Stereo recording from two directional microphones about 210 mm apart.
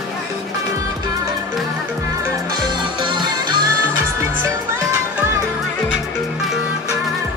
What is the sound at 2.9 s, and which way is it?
Music, 20° right (ahead or behind).